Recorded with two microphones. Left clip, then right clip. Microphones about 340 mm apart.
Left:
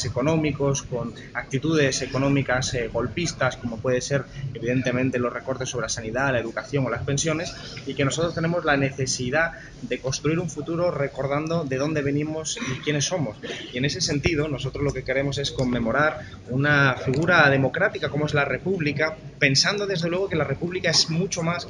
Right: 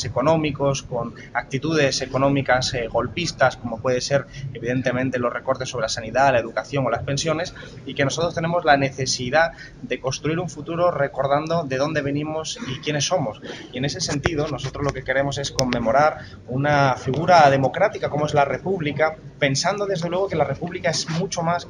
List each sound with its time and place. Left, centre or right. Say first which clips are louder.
0.0 s speech: right 4 dB; right